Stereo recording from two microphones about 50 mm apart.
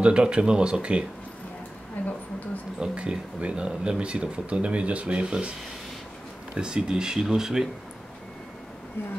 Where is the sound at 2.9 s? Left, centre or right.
Right.